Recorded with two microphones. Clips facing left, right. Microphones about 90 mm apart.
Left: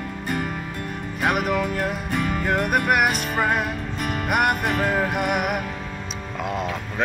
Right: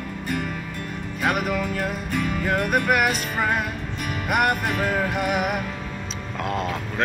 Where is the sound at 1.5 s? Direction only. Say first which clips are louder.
Left 2 dB; centre (ahead or behind).